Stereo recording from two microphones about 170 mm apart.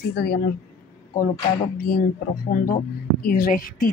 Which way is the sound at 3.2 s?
60° left (ahead or behind).